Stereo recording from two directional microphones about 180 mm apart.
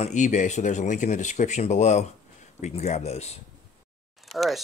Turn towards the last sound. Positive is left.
turn(degrees=0)  # may be behind; listen again after turning